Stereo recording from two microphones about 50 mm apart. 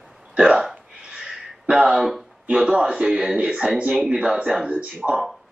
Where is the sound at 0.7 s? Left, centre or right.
Centre.